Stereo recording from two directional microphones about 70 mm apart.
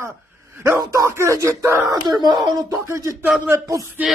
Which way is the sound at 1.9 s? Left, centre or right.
Right.